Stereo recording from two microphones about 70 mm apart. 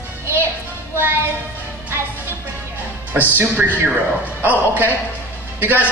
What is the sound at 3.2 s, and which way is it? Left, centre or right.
A man's voice, right.